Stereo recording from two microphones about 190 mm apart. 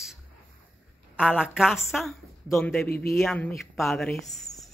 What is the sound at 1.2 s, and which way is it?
Speech, 5° right (ahead or behind).